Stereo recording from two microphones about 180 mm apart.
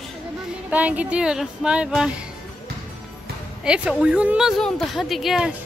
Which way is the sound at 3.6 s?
5° right (ahead or behind).